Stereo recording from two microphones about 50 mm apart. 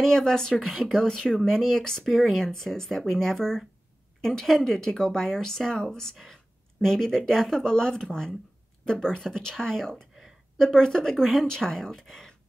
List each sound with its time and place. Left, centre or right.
0.0 s speech: centre
1.0 s speech: centre
2.1 s speech: centre